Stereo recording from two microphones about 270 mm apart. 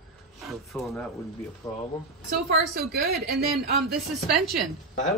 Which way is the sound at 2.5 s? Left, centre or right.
Right.